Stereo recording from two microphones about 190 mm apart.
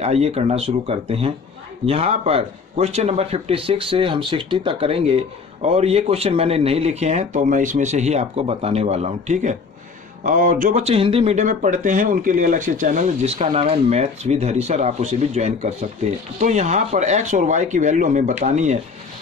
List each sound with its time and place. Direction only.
0.0 s speech: 35° right (ahead or behind)